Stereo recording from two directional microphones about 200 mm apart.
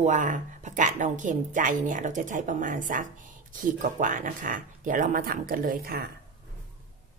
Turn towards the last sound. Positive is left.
turn(degrees=-50)  # may be behind; listen again after turning